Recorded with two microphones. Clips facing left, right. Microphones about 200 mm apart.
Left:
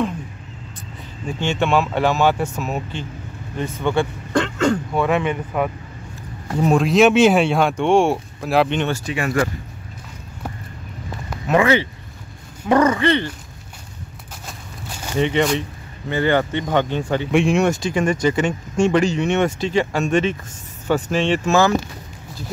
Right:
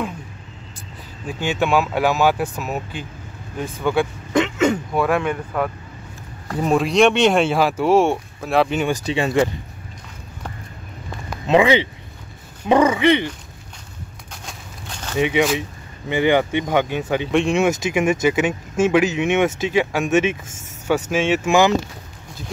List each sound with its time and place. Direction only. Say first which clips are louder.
1.2 s speech: even; 5° right (ahead or behind)
4.3 s a sound: right 1 dB; 20° right (ahead or behind)
4.9 s speech: even; centre (ahead or behind)
9.1 s speech: right 3 dB; 25° right (ahead or behind)
11.4 s speech: right 1 dB; 15° right (ahead or behind)
14.3 s a sound: left 1 dB; 5° left (ahead or behind)
15.1 s speech: even; 5° right (ahead or behind)
16.1 s speech: right 1 dB; 15° right (ahead or behind)
17.3 s speech: left 1 dB; centre (ahead or behind); by 21.7 s 15° right (ahead or behind)